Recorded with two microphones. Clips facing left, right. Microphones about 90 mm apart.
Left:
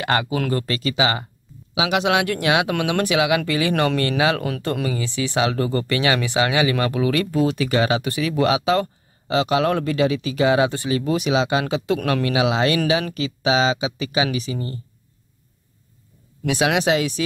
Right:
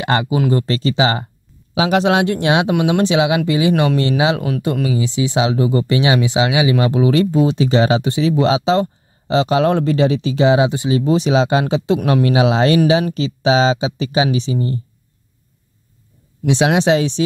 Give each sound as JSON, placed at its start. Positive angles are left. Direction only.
{"t": 0.0, "sound": "speech", "side_deg": -25}
{"t": 16.4, "sound": "speech", "side_deg": -30}